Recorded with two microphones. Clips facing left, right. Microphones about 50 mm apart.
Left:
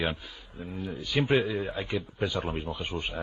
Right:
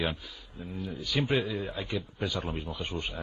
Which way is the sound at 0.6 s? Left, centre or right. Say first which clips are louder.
Left 2 dB; centre.